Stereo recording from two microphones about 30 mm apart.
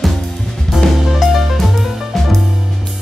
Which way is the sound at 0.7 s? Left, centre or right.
Centre.